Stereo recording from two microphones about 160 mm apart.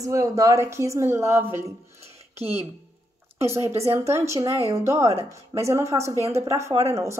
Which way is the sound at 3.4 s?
15° right (ahead or behind).